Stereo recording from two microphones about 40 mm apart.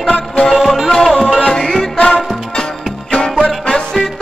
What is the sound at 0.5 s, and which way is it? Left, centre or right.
Music, centre.